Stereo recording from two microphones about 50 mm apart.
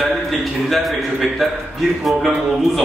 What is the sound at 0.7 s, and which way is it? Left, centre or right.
A man's voice, centre.